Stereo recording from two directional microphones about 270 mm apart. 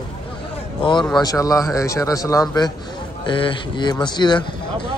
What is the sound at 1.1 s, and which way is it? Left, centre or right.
A man's voice, centre.